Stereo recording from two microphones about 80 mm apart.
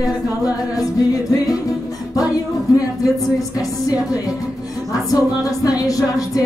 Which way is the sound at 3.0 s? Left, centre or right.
Left.